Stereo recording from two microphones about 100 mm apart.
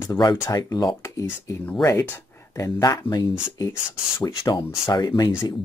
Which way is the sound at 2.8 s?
40° left (ahead or behind).